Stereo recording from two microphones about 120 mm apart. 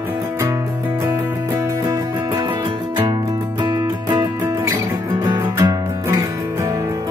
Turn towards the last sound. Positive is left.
turn(degrees=-25)  # may be behind; listen again after turning